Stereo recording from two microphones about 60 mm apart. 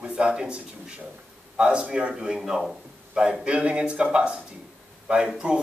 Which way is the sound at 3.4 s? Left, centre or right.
Centre.